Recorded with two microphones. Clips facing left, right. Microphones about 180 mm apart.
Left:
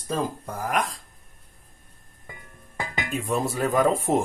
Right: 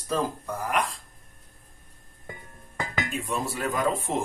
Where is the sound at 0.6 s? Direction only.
40° left (ahead or behind).